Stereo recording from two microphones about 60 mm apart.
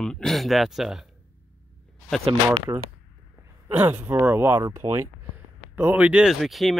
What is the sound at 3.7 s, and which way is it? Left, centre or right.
Speech, right.